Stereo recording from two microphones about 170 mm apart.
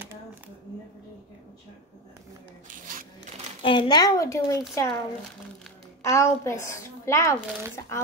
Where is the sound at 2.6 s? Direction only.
50° right (ahead or behind).